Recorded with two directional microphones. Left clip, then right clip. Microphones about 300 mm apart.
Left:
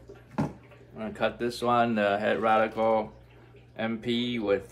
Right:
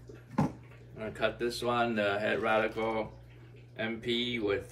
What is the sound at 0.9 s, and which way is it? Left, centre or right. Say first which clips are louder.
A man's voice: left 3 dB; centre.